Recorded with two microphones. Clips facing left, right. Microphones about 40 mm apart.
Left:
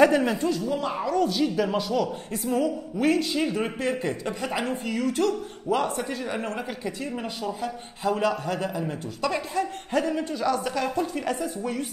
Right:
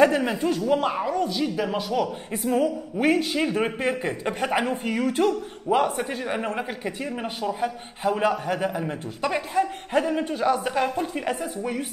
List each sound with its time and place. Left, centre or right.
0.0 s speech: centre
0.5 s a woman's voice: right
0.9 s a man's voice: centre
1.2 s speech: centre
2.5 s a man's voice: right